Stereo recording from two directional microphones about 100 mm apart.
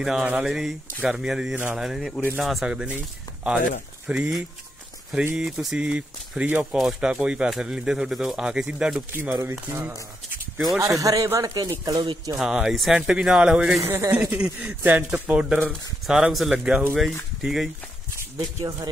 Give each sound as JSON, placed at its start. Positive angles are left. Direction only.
{"t": 0.0, "sound": "speech", "side_deg": -5}
{"t": 4.1, "sound": "speech", "side_deg": -10}
{"t": 5.4, "sound": "speech", "side_deg": -5}
{"t": 9.1, "sound": "speech", "side_deg": -25}
{"t": 10.8, "sound": "speech", "side_deg": -35}
{"t": 12.4, "sound": "speech", "side_deg": -5}
{"t": 13.8, "sound": "speech", "side_deg": -25}
{"t": 14.1, "sound": "speech", "side_deg": -10}
{"t": 18.1, "sound": "speech", "side_deg": -30}